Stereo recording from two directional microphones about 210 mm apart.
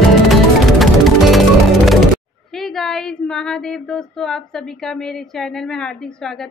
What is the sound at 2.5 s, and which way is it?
Female singing, centre (ahead or behind).